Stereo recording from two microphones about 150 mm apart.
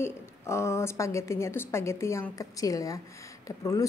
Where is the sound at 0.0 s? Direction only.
20° left (ahead or behind).